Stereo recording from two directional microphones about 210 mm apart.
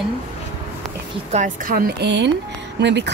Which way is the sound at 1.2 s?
35° right (ahead or behind).